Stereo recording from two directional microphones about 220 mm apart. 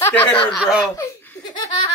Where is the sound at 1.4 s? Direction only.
20° left (ahead or behind).